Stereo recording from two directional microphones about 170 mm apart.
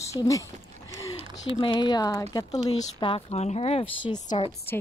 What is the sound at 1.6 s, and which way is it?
Speech, 25° left (ahead or behind).